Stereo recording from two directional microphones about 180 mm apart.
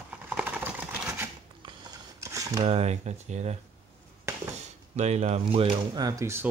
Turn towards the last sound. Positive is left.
turn(degrees=-15)  # may be behind; listen again after turning